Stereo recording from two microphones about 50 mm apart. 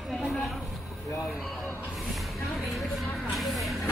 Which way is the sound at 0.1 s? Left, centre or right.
Centre.